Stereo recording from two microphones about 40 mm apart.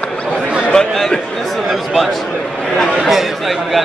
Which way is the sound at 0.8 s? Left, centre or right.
Centre.